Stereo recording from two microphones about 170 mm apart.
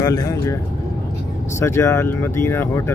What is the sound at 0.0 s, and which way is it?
Speech, 20° left (ahead or behind).